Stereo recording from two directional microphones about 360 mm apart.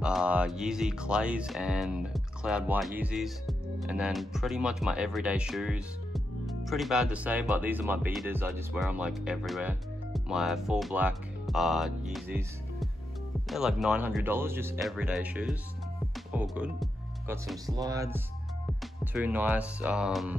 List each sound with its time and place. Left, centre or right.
0.0 s speech: centre
19.1 s speech: centre